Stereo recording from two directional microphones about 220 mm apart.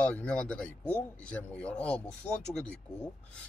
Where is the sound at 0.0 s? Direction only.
5° left (ahead or behind).